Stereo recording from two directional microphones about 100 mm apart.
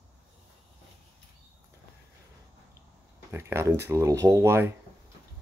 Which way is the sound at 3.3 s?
25° right (ahead or behind).